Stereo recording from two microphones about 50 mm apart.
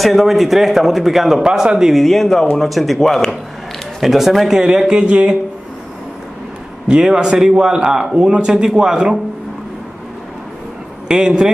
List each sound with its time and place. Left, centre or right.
0.0 s speech: centre
1.4 s a man's voice: centre
2.0 s speech: centre
4.6 s a man's voice: centre
6.9 s a man's voice: centre
11.1 s a man's voice: centre